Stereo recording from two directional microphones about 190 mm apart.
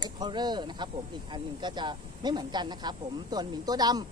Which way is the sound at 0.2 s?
20° right (ahead or behind).